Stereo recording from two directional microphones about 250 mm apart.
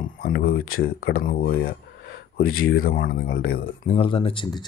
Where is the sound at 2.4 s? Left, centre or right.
Left.